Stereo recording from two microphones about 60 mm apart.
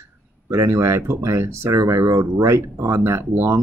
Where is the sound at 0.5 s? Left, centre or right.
Right.